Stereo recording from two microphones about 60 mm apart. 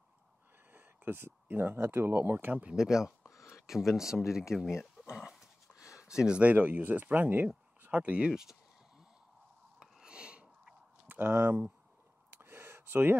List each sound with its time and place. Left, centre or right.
0.7 s a sound: right
1.9 s speech: right
2.7 s speech: centre
5.1 s dog: centre
6.0 s speech: centre
8.3 s speech: centre
9.8 s a sound: centre
11.1 s speech: right
12.3 s a sound: right